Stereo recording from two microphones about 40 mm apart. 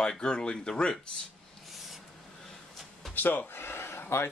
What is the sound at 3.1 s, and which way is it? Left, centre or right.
Speech, left.